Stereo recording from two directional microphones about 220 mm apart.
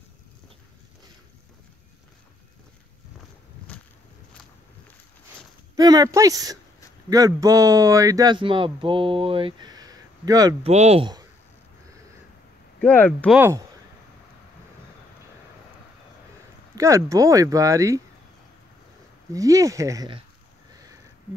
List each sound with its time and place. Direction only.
5.8 s speech: 15° right (ahead or behind)
10.7 s speech: 30° right (ahead or behind)
12.8 s speech: 5° left (ahead or behind)
13.4 s speech: 10° right (ahead or behind)
16.7 s speech: 15° right (ahead or behind)
19.3 s speech: 15° right (ahead or behind)
20.7 s sniff: 15° right (ahead or behind)